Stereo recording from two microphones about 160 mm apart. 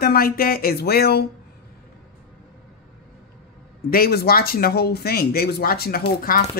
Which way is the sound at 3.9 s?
75° left (ahead or behind).